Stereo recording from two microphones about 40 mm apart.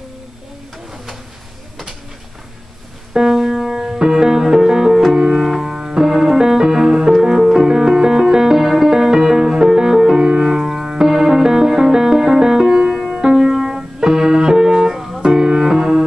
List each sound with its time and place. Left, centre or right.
3.1 s music: centre
5.1 s music: centre
5.6 s piano: centre
7.6 s music: centre
10.2 s music: right
10.5 s music: centre
15.2 s music: centre